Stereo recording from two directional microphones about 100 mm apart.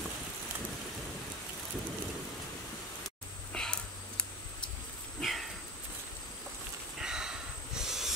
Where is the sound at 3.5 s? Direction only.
10° left (ahead or behind).